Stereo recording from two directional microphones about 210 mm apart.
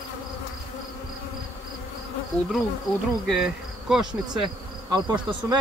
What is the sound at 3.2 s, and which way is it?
Insect, centre (ahead or behind).